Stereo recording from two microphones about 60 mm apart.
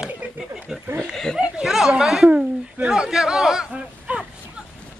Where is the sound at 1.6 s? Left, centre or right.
Centre.